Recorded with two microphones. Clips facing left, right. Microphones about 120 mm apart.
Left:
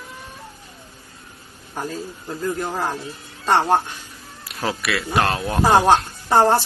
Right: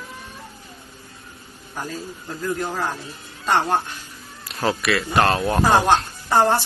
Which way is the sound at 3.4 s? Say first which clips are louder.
Left 3 dB; 30° left (ahead or behind).